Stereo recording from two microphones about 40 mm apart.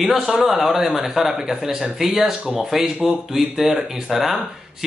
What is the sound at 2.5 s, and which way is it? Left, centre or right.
Speech, centre.